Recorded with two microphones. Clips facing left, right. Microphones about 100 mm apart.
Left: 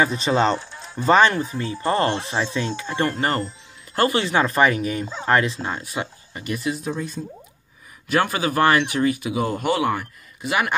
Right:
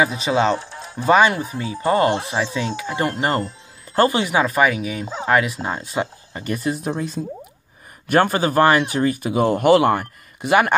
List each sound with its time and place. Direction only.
0.0 s speech: 5° right (ahead or behind); by 6.4 s 25° right (ahead or behind)
6.4 s a man's voice: 40° right (ahead or behind)
6.8 s speech: 85° right
8.1 s a man's voice: 45° right (ahead or behind)
8.6 s speech: 25° right (ahead or behind); by 10.7 s 50° right (ahead or behind)